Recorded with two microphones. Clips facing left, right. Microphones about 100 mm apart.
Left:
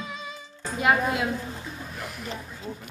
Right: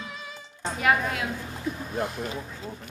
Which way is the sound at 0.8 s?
20° left (ahead or behind).